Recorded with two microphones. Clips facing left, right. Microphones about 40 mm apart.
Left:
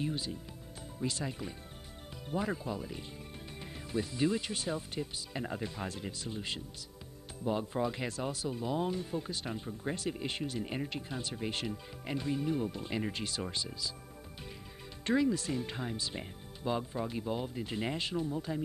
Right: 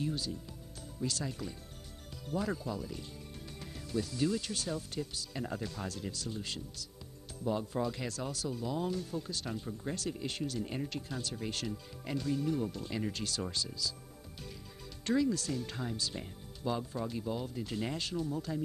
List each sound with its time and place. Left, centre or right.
0.0 s music: left
0.9 s speech: left
15.0 s speech: left